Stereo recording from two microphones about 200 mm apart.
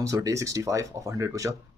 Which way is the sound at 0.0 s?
15° right (ahead or behind).